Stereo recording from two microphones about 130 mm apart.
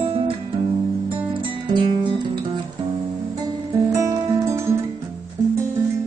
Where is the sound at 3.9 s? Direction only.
25° right (ahead or behind).